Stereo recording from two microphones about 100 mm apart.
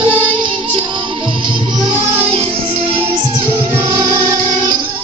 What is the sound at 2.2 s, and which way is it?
Music, 80° right.